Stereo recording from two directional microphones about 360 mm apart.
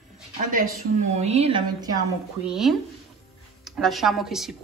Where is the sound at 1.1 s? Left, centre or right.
Centre.